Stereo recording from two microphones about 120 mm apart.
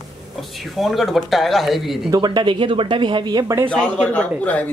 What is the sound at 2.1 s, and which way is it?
Speech, 40° right (ahead or behind).